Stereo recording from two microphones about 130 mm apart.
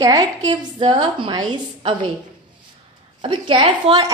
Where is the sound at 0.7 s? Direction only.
40° right (ahead or behind).